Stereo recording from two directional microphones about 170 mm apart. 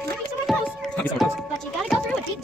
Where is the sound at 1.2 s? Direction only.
Centre (ahead or behind).